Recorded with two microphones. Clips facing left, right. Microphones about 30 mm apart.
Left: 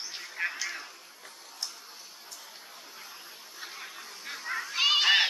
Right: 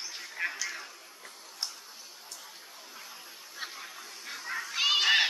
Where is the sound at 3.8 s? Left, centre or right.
Centre.